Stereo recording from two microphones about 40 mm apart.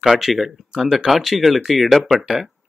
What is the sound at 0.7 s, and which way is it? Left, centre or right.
Speech, centre.